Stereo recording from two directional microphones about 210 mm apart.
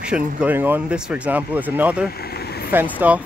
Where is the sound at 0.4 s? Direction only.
10° right (ahead or behind).